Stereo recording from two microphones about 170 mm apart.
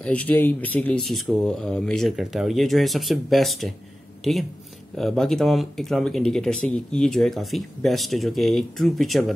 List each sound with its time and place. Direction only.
0.0 s speech: 10° left (ahead or behind)